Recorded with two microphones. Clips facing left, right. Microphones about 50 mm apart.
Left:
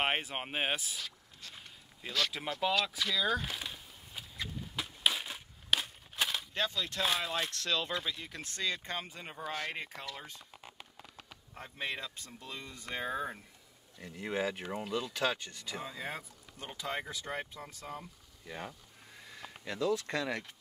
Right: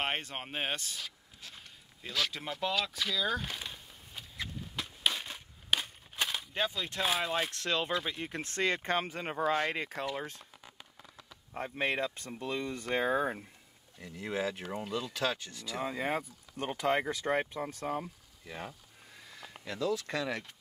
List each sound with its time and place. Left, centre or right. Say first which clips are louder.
0.0 s speech: left 2 dB; centre
4.7 s crushing: left 1 dB; centre
6.5 s speech: right 1 dB; centre
7.5 s speech: right 2 dB; right
11.7 s speech: right 6 dB; right
14.0 s speech: even; centre
15.8 s speech: right 9 dB; right
16.2 s speech: right 9 dB; right
17.8 s speech: right 8 dB; right
18.4 s a sound: even; centre
19.6 s speech: left 1 dB; centre